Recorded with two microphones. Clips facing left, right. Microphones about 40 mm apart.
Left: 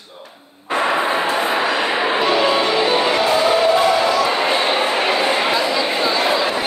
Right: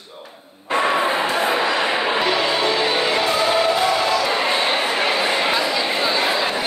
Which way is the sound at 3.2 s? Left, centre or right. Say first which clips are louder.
Left 3 dB; left.